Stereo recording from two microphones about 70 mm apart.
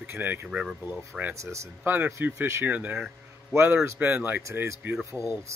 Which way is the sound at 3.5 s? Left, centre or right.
Right.